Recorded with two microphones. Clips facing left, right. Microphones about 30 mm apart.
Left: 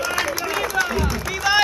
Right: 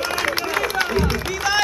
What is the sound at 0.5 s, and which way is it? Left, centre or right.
Run, right.